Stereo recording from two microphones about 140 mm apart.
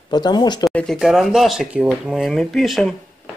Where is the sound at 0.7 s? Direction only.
5° left (ahead or behind).